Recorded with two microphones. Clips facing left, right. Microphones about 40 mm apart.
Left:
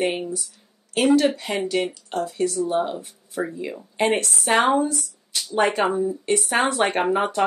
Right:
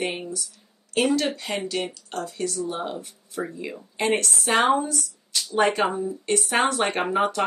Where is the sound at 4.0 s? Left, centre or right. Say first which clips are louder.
Left 2 dB; left.